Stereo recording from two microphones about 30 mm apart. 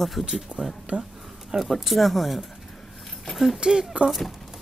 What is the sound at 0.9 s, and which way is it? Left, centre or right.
Speech, right.